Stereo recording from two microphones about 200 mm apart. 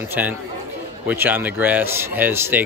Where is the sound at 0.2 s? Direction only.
5° right (ahead or behind).